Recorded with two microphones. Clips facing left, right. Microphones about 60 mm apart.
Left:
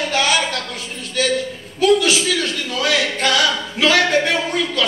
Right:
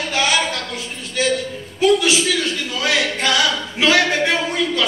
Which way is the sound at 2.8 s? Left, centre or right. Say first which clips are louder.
Left 1 dB; centre.